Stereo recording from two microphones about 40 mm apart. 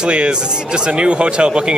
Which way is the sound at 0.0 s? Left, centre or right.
Right.